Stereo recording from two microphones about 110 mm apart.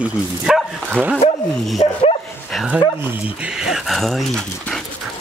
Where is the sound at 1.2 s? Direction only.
75° left (ahead or behind).